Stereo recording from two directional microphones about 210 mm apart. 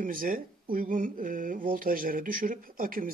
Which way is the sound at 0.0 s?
40° right (ahead or behind).